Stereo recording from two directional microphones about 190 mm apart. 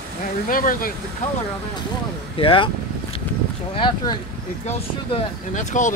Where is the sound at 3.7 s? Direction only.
25° left (ahead or behind).